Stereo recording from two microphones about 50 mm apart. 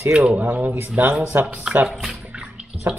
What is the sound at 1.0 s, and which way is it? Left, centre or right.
Speech, right.